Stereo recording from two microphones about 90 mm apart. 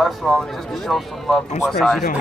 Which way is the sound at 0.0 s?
Centre (ahead or behind).